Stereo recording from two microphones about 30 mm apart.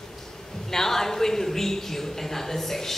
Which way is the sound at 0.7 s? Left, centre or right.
Centre.